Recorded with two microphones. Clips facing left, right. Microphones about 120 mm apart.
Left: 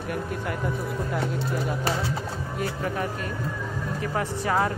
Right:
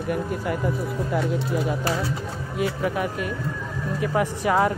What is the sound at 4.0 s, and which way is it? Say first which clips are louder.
Speech: right 6 dB; 15° right (ahead or behind).